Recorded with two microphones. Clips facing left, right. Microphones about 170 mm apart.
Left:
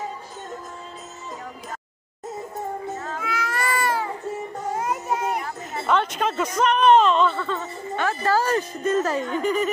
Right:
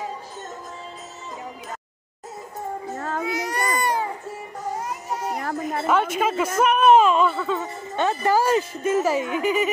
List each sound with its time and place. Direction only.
3.3 s baby cry: 20° right (ahead or behind)
4.7 s music: 55° left (ahead or behind)
5.4 s a sound: 55° right (ahead or behind)
6.1 s speech: 5° right (ahead or behind)
7.9 s speech: 20° right (ahead or behind); by 9.7 s 5° right (ahead or behind)